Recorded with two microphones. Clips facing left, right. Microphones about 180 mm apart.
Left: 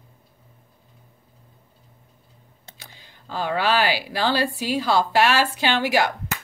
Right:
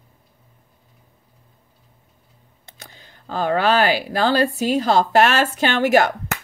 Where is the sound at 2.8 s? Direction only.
45° right (ahead or behind).